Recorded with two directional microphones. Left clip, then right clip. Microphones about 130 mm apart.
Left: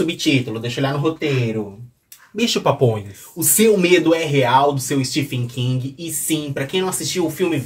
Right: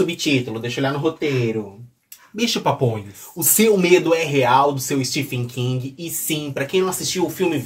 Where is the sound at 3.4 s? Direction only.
20° right (ahead or behind).